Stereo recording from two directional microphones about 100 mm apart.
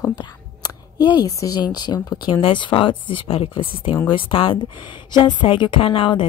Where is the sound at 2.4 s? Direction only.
60° left (ahead or behind).